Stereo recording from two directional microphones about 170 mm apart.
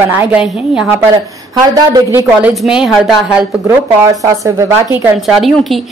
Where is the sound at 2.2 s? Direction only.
Centre (ahead or behind).